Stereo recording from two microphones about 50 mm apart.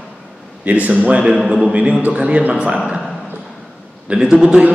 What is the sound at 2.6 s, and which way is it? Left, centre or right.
Speech, centre.